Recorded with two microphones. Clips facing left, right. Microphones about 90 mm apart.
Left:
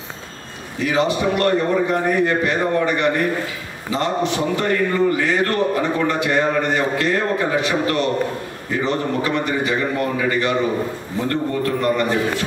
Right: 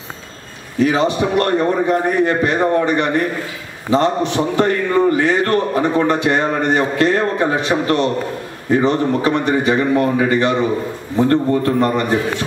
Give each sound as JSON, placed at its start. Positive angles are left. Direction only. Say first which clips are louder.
{"t": 0.8, "sound": "a man's voice", "louder": "right 2 dB", "side_deg": -35}